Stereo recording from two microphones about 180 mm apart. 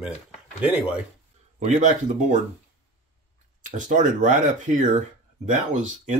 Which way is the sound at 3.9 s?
45° right (ahead or behind).